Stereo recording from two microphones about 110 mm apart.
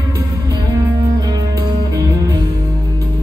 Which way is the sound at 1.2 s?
35° right (ahead or behind).